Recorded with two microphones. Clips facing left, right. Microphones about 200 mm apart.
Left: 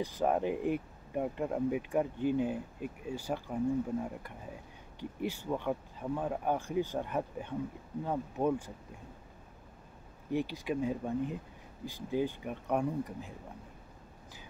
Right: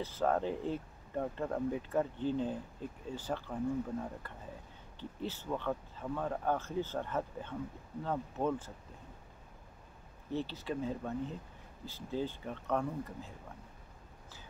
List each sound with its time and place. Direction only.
0.0 s speech: 15° left (ahead or behind)
10.3 s speech: 15° left (ahead or behind)